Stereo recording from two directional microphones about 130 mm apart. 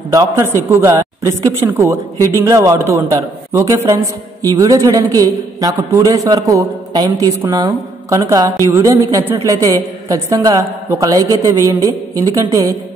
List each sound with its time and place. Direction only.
0.1 s speech: 25° right (ahead or behind)